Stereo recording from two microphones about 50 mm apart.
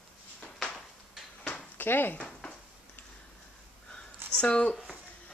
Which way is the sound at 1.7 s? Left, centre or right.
Left.